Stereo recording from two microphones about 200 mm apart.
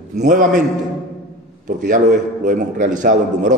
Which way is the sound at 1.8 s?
45° right (ahead or behind).